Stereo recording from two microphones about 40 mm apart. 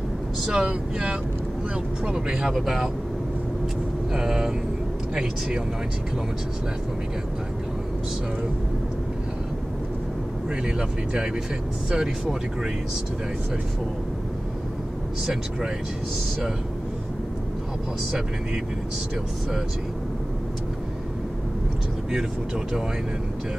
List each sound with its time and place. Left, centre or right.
0.5 s speech: right
4.1 s speech: centre
10.5 s speech: centre